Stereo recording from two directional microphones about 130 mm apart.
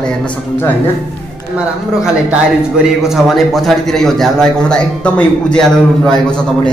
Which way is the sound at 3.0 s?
Centre (ahead or behind).